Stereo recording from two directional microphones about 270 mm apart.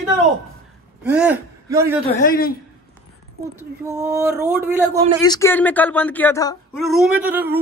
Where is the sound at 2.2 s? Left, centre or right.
Left.